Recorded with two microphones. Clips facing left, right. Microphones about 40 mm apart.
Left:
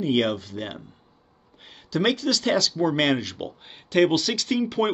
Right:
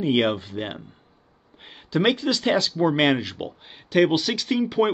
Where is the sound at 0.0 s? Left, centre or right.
Right.